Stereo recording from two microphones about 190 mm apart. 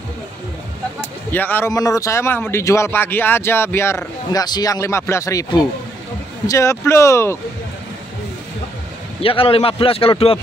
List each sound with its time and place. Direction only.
1.3 s speech: 10° left (ahead or behind)
9.2 s speech: 30° left (ahead or behind)